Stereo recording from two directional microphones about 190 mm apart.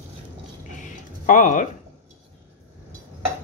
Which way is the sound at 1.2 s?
40° left (ahead or behind).